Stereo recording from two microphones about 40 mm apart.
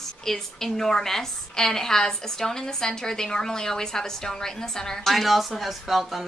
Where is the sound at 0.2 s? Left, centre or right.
Centre.